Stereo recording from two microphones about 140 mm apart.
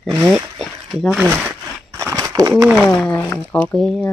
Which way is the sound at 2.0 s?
25° right (ahead or behind).